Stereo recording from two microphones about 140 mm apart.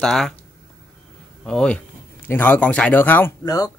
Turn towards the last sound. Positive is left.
turn(degrees=25)  # may be behind; listen again after turning